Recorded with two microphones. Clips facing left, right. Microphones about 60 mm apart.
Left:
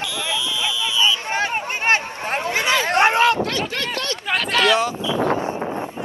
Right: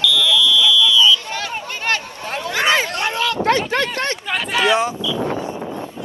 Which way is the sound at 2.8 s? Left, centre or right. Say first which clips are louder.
Left 6 dB; left.